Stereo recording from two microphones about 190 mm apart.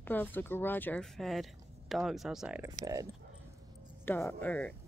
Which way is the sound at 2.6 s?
20° right (ahead or behind).